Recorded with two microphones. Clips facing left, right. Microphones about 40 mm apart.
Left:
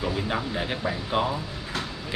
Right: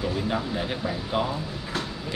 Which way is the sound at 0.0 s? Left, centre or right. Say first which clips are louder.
Even; centre.